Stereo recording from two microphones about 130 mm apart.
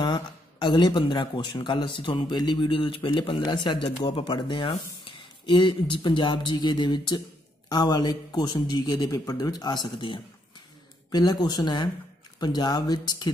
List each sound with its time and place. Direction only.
0.0 s a man's voice: 35° left (ahead or behind)